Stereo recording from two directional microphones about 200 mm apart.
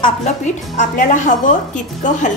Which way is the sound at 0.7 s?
40° left (ahead or behind).